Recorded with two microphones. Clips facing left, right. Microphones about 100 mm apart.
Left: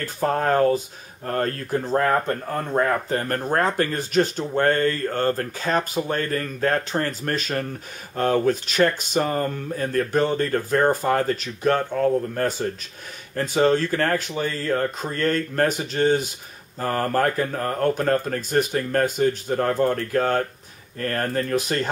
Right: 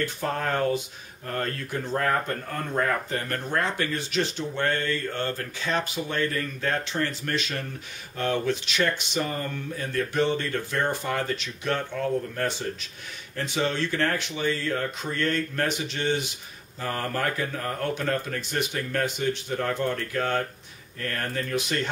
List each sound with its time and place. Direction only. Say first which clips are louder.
0.0 s speech: left 5 dB; 40° left (ahead or behind)